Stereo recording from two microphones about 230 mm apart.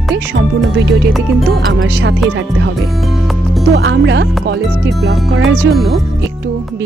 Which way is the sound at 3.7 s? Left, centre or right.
Right.